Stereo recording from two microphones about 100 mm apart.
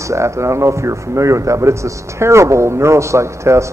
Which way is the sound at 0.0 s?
30° right (ahead or behind).